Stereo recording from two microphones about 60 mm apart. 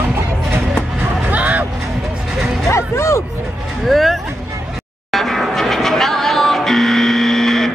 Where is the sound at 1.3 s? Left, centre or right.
Right.